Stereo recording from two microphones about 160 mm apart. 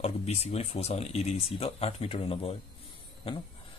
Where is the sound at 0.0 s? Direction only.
40° left (ahead or behind).